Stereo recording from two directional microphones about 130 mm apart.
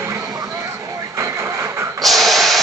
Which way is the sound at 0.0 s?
20° right (ahead or behind).